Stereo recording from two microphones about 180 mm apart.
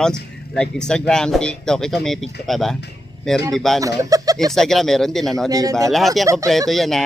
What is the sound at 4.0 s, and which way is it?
Speech, 20° right (ahead or behind).